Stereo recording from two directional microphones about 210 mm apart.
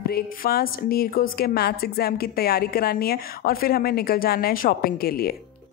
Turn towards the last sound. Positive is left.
turn(degrees=45)  # may be behind; listen again after turning